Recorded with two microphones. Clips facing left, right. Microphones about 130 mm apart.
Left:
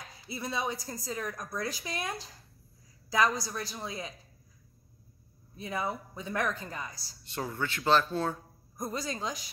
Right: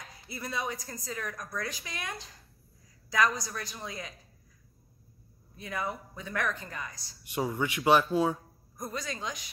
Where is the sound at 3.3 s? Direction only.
30° left (ahead or behind).